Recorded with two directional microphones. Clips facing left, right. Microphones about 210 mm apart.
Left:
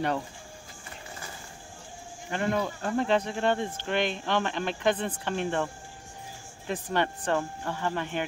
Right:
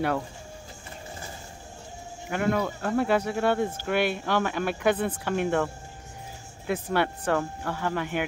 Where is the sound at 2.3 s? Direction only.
5° right (ahead or behind).